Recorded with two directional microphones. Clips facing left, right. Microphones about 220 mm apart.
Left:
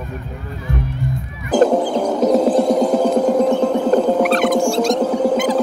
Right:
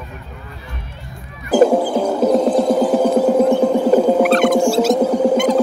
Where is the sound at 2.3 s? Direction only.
5° left (ahead or behind).